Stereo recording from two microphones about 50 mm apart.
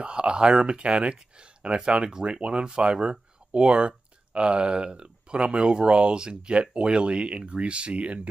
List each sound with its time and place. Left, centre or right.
0.0 s speech: centre